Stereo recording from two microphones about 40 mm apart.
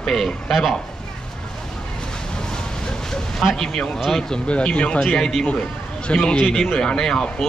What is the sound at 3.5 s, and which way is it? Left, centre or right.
Speech, centre.